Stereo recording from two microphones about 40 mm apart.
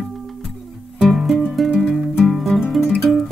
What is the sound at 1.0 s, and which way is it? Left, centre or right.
Music, centre.